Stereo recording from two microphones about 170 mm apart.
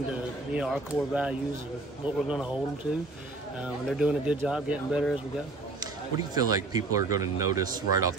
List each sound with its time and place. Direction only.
0.1 s speech: 5° right (ahead or behind)
5.8 s speech: 20° right (ahead or behind)